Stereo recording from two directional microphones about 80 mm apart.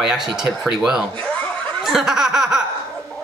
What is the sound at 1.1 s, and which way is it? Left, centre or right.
Chuckle, centre.